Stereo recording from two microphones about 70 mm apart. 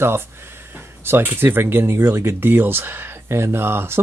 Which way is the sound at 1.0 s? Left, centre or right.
Right.